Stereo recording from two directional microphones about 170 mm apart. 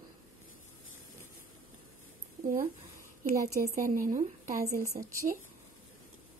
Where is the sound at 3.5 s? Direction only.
55° right (ahead or behind).